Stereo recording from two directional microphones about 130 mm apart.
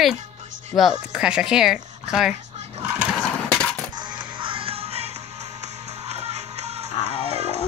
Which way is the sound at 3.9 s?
35° right (ahead or behind).